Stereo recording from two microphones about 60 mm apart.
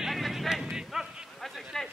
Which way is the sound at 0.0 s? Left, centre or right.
Centre.